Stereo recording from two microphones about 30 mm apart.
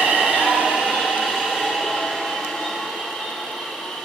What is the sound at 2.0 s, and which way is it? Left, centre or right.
Train, centre.